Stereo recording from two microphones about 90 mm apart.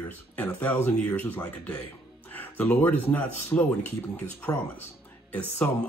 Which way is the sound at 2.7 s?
20° left (ahead or behind).